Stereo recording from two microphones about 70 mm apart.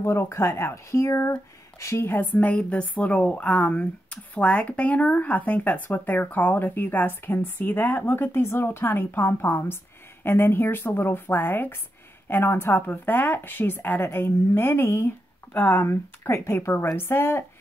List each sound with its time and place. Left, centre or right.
0.0 s speech: left
2.3 s speech: centre